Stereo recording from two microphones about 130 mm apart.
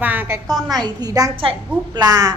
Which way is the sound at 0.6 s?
30° right (ahead or behind).